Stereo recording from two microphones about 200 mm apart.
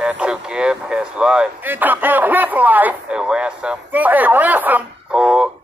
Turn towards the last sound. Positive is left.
turn(degrees=-5)  # may be behind; listen again after turning